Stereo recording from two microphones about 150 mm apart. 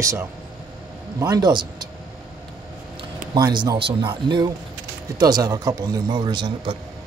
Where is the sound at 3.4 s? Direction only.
30° right (ahead or behind).